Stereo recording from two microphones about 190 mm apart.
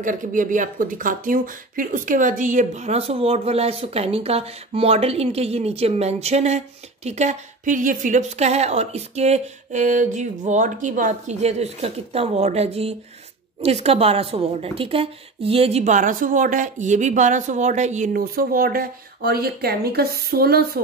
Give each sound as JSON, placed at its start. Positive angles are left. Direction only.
{"t": 0.0, "sound": "a woman's voice", "side_deg": -45}